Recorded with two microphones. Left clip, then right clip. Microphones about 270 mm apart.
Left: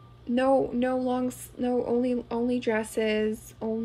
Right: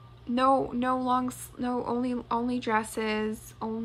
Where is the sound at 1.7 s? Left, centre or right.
Centre.